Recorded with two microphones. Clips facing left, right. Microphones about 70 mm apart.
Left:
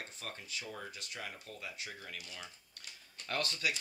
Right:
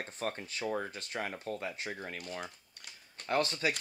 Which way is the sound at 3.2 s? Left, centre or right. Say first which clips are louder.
Right 6 dB; right.